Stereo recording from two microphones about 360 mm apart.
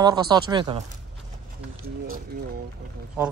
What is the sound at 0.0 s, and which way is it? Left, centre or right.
Speech, centre.